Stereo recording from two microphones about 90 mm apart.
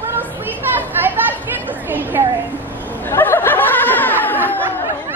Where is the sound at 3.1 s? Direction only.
25° left (ahead or behind).